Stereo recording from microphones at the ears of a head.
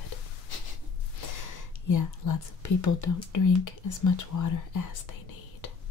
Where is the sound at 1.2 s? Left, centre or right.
Left.